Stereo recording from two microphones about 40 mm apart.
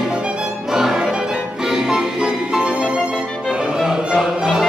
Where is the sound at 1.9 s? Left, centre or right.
Centre.